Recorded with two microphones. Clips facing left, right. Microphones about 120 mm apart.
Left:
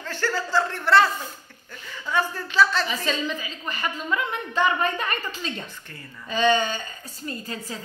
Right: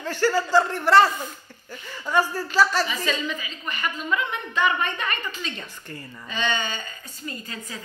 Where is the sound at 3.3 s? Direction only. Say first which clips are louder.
Left 1 dB; 40° left (ahead or behind).